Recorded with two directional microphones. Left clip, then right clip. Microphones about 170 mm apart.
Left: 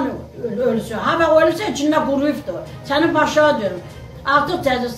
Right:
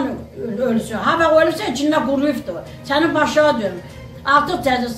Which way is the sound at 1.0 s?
5° right (ahead or behind).